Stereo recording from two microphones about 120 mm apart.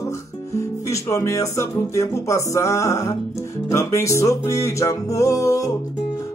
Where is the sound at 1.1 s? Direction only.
25° left (ahead or behind).